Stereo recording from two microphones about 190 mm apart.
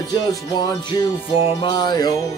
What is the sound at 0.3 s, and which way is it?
Music, 20° left (ahead or behind).